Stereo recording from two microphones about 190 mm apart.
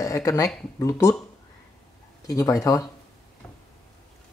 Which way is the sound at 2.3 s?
15° left (ahead or behind).